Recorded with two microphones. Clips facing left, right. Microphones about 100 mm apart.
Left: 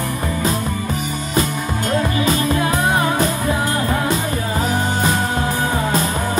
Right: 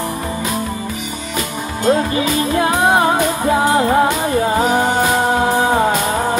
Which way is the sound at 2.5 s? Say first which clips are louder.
Right 4 dB; 40° right (ahead or behind).